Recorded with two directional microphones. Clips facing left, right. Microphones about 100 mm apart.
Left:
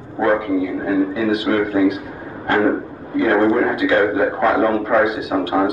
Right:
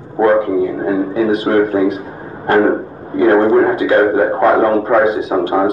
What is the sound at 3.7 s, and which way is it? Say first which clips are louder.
A man's voice: right 4 dB; 40° right (ahead or behind).